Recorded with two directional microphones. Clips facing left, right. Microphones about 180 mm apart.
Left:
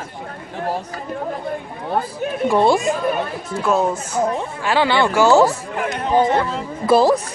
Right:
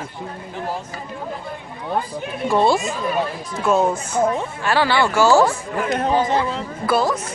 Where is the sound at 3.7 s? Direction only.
Centre (ahead or behind).